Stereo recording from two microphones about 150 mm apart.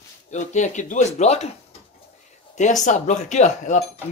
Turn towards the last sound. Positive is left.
turn(degrees=50)  # may be behind; listen again after turning